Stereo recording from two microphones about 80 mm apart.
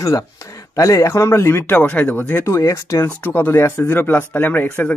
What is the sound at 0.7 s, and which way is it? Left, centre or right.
A man's voice, left.